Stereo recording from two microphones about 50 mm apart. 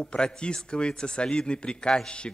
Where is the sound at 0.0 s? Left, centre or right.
Centre.